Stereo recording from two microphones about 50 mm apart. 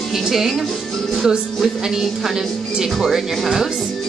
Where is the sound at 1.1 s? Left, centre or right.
Centre.